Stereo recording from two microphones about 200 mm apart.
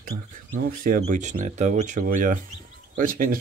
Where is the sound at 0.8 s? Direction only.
40° right (ahead or behind).